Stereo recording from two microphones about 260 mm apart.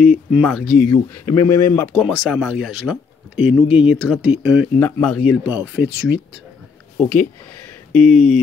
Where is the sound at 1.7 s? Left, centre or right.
Centre.